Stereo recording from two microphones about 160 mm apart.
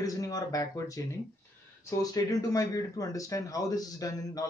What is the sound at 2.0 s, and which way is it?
Speech, 25° left (ahead or behind).